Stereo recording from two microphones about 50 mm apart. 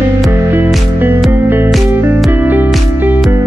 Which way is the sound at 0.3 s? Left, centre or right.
Right.